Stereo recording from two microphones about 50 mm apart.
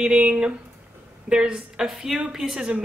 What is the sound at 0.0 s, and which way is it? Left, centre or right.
A woman's voice, centre.